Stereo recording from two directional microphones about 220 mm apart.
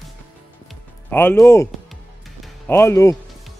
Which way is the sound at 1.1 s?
10° left (ahead or behind).